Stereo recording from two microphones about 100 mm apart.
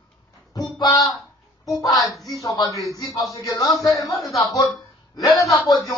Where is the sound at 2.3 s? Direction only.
35° left (ahead or behind).